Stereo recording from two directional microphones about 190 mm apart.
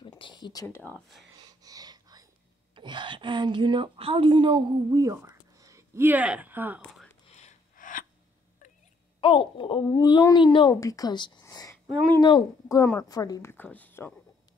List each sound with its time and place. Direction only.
0.2 s a sound: 25° left (ahead or behind)
0.7 s speech: 10° left (ahead or behind)
1.6 s whispering: 20° right (ahead or behind)
2.7 s a woman's voice: 25° right (ahead or behind); by 6.8 s 10° right (ahead or behind)
7.2 s gasp: 35° left (ahead or behind)
9.2 s a woman's voice: 25° left (ahead or behind); by 14.1 s 10° left (ahead or behind)